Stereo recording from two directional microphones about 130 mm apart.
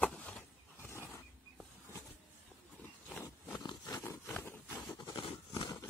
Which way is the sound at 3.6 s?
30° left (ahead or behind).